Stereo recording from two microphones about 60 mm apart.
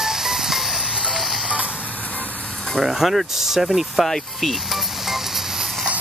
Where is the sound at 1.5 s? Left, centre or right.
Right.